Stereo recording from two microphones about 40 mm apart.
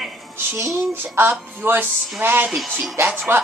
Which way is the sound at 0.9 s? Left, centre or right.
Right.